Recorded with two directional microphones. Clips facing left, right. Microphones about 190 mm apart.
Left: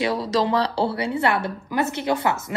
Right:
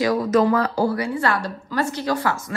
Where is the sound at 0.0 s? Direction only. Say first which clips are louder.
Right 4 dB; 30° left (ahead or behind).